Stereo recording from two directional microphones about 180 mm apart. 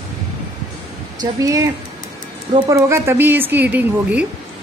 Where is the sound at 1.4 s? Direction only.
20° right (ahead or behind).